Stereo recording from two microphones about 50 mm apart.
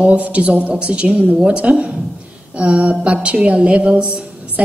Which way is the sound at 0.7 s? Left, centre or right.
Centre.